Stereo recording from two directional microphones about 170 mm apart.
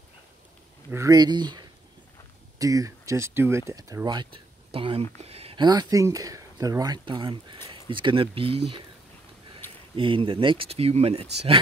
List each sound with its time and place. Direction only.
0.9 s speech: 20° right (ahead or behind)
9.9 s speech: 30° right (ahead or behind)